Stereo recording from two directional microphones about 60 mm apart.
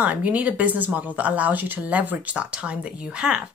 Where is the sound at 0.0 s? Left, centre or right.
Right.